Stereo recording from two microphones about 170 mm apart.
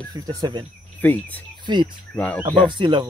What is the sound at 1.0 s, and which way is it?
Speech, 10° left (ahead or behind).